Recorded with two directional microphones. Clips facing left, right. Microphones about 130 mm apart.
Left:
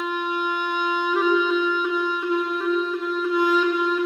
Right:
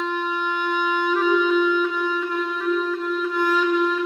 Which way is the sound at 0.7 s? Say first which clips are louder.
Right 5 dB; 15° left (ahead or behind).